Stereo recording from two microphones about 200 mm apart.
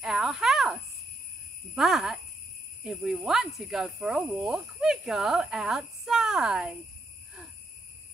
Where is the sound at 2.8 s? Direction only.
Centre (ahead or behind).